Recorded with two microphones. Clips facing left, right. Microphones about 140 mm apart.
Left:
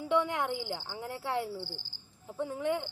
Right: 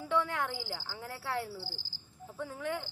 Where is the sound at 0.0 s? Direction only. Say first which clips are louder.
Left 3 dB; 20° left (ahead or behind).